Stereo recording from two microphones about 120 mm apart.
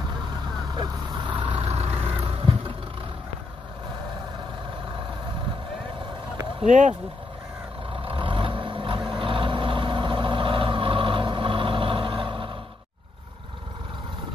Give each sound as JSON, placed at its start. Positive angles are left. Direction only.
{"t": 1.1, "sound": "vehicle", "side_deg": -40}
{"t": 6.6, "sound": "speech", "side_deg": -85}
{"t": 7.9, "sound": "vehicle", "side_deg": -50}